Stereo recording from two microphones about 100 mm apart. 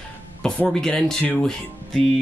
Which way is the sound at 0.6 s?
5° left (ahead or behind).